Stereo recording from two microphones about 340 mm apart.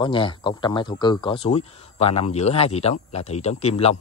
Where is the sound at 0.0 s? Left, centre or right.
Centre.